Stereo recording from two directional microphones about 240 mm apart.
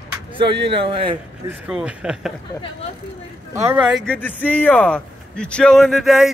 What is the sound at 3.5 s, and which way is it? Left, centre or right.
Speech, centre.